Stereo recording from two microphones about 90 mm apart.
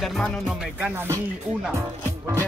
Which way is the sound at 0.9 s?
30° right (ahead or behind).